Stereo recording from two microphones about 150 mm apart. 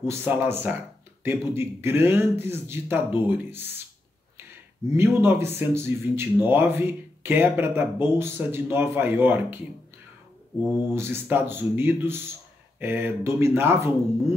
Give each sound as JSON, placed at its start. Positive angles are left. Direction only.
{"t": 0.0, "sound": "speech", "side_deg": -15}
{"t": 4.9, "sound": "speech", "side_deg": -15}
{"t": 10.6, "sound": "speech", "side_deg": -15}